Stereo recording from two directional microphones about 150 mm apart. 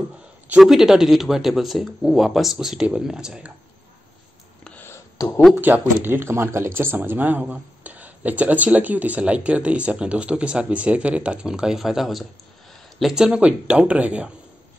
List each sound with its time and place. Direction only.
0.5 s speech: 5° right (ahead or behind)
4.6 s a sound: 15° left (ahead or behind)
5.6 s speech: 15° right (ahead or behind)